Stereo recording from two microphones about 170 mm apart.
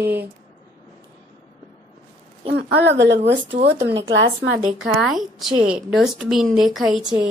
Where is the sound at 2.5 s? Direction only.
80° right.